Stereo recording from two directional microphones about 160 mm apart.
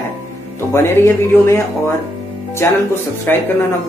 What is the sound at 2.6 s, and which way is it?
Speech, 15° left (ahead or behind).